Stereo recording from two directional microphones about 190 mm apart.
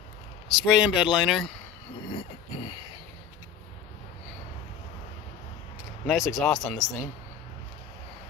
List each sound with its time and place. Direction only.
0.7 s speech: 5° right (ahead or behind)
2.0 s a sound: 25° left (ahead or behind)
6.0 s speech: centre (ahead or behind)